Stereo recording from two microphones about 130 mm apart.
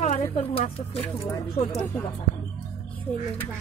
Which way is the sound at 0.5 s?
50° left (ahead or behind).